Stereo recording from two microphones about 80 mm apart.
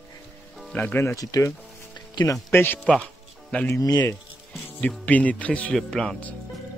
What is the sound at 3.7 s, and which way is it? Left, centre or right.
Speech, left.